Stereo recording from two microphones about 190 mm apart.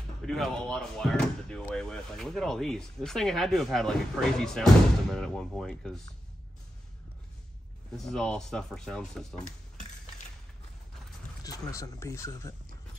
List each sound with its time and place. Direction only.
0.2 s speech: centre (ahead or behind)
7.9 s speech: centre (ahead or behind)
11.4 s speech: 15° left (ahead or behind)